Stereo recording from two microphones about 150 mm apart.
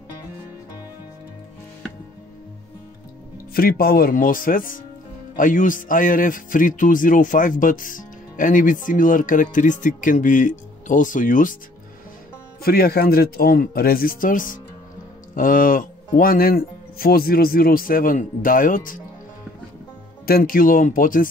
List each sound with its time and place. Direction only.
3.5 s speech: 80° left; by 11.5 s 60° left (ahead or behind)
12.6 s speech: 90° left; by 18.9 s 65° left (ahead or behind)
20.2 s speech: 75° left (ahead or behind)